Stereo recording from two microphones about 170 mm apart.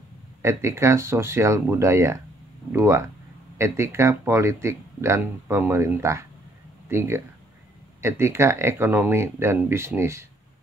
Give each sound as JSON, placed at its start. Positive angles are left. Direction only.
{"t": 0.4, "sound": "speech", "side_deg": -15}